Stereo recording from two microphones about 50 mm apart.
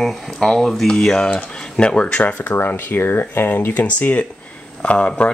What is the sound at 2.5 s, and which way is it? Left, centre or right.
Speech, left.